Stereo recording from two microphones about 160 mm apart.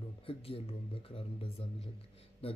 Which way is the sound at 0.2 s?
35° left (ahead or behind).